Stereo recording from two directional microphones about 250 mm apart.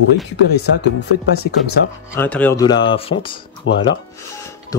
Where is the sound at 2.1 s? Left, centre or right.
Centre.